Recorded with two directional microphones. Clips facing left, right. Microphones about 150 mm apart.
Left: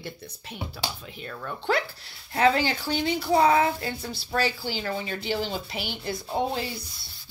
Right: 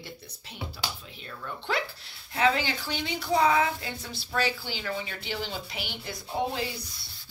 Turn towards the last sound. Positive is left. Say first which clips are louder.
# left 3 dB
turn(degrees=25)  # may be behind; listen again after turning